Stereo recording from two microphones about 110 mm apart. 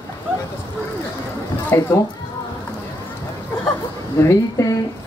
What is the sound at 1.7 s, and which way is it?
Speech, 20° left (ahead or behind).